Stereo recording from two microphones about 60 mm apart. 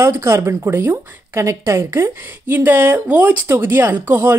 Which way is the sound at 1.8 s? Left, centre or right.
Right.